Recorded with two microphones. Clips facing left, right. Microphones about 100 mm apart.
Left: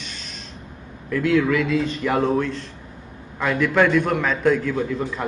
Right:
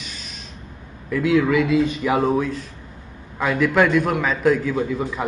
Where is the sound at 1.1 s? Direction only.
10° right (ahead or behind).